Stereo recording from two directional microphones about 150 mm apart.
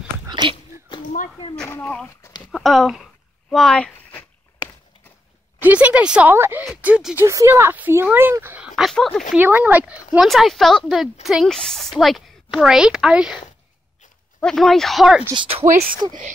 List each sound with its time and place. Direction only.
0.3 s a sound: 30° right (ahead or behind)
1.5 s speech: 10° left (ahead or behind)
2.5 s a sound: centre (ahead or behind)
5.6 s speech: 10° right (ahead or behind)
7.2 s speech: 20° right (ahead or behind)
8.7 s a woman's voice: centre (ahead or behind)
9.3 s a woman's voice: 10° right (ahead or behind)
14.4 s a woman's voice: 5° left (ahead or behind)
15.3 s speech: 40° right (ahead or behind)